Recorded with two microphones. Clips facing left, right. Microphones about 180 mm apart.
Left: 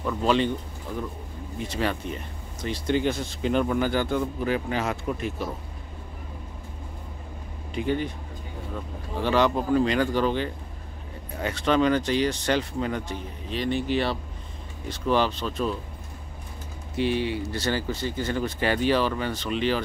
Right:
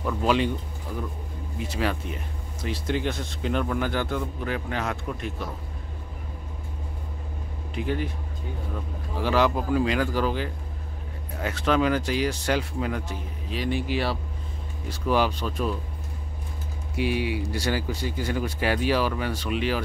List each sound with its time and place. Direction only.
0.0 s speech: 5° right (ahead or behind)
1.6 s speech: 5° right (ahead or behind)
7.7 s speech: centre (ahead or behind)
9.1 s speech: 5° right (ahead or behind)
16.9 s speech: 10° right (ahead or behind)